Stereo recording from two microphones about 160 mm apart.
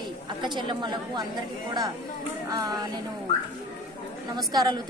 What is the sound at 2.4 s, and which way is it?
Speech, 25° right (ahead or behind).